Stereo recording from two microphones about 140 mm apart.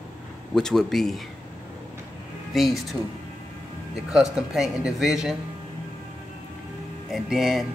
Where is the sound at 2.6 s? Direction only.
Centre (ahead or behind).